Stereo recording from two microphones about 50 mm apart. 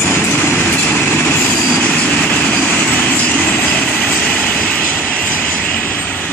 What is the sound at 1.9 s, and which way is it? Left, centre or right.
Train, left.